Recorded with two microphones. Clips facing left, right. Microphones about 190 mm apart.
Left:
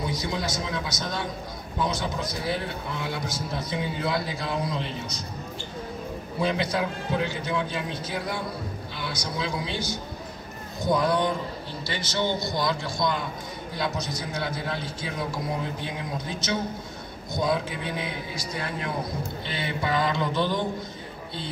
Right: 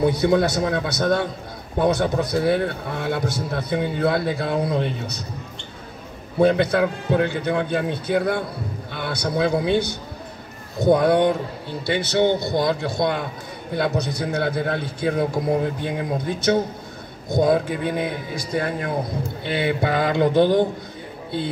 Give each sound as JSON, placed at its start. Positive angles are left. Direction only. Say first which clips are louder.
{"t": 0.0, "sound": "a man's voice", "louder": "right 12 dB", "side_deg": -60}
{"t": 6.4, "sound": "a man's voice", "louder": "right 9 dB", "side_deg": -55}